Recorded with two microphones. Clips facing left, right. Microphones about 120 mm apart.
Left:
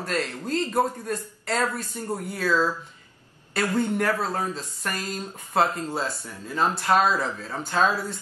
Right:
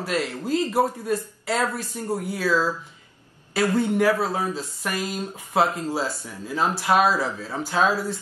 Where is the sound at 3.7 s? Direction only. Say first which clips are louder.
Right 3 dB; 5° right (ahead or behind).